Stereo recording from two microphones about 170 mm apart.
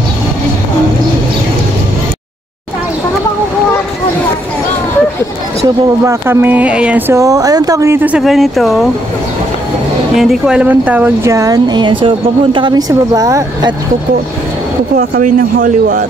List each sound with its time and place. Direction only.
6.0 s speech: 15° right (ahead or behind)
7.2 s speech: 20° right (ahead or behind); by 8.8 s centre (ahead or behind)
10.1 s speech: centre (ahead or behind); by 13.7 s 20° right (ahead or behind)
15.0 s speech: 55° right (ahead or behind)